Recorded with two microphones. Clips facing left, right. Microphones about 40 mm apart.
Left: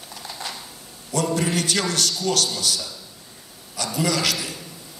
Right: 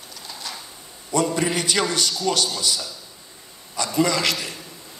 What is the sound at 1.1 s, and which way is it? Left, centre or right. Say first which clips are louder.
A man's voice: right 1 dB; centre.